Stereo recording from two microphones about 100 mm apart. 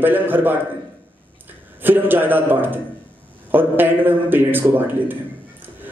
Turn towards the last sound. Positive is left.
turn(degrees=-20)  # may be behind; listen again after turning